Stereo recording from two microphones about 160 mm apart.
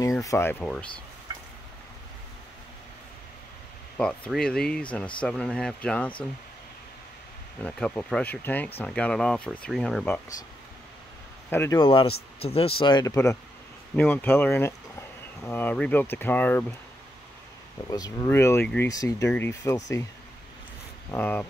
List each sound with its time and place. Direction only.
0.0 s speech: 20° left (ahead or behind)
3.9 s speech: 10° left (ahead or behind)
7.6 s speech: 10° left (ahead or behind)
11.5 s speech: 15° left (ahead or behind)
11.8 s speech: 35° left (ahead or behind); by 16.6 s 10° left (ahead or behind)
17.8 s speech: 20° left (ahead or behind)
21.1 s speech: 10° left (ahead or behind)